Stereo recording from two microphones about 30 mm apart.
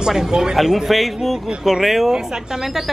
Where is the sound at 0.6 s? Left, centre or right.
Centre.